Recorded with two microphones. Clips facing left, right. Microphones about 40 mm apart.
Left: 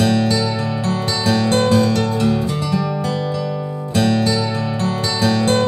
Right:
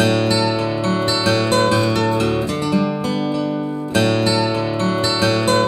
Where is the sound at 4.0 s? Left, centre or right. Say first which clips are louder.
Even; right.